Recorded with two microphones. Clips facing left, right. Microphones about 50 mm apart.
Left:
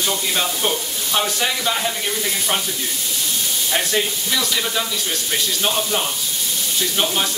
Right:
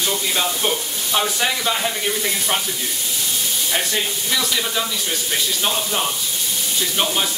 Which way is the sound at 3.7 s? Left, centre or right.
Centre.